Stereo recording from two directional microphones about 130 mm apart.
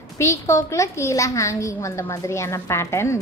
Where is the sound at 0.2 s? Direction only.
25° left (ahead or behind).